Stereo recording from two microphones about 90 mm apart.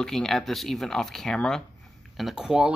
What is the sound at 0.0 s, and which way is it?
Speech, 5° left (ahead or behind).